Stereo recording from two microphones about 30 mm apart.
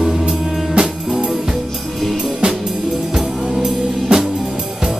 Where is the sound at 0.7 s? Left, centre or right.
Right.